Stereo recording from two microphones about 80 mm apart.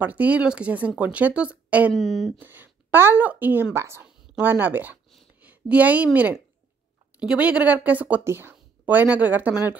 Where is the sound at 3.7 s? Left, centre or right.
Right.